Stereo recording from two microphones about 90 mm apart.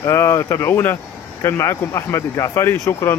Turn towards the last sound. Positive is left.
turn(degrees=35)  # may be behind; listen again after turning